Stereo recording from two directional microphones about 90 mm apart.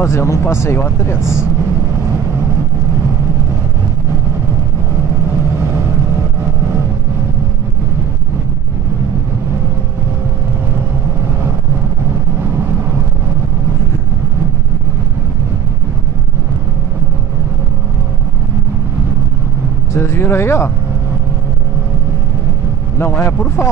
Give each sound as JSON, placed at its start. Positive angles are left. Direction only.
{"t": 0.0, "sound": "speech", "side_deg": 30}
{"t": 19.9, "sound": "speech", "side_deg": 30}
{"t": 22.9, "sound": "a man's voice", "side_deg": 25}